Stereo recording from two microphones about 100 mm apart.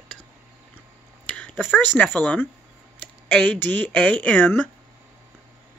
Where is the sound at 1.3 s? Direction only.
15° left (ahead or behind).